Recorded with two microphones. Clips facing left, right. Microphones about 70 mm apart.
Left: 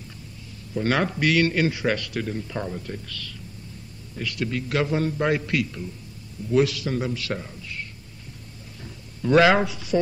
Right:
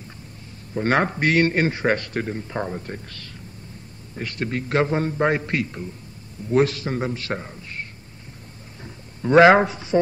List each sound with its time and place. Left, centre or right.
0.7 s a man's voice: right
8.8 s a man's voice: right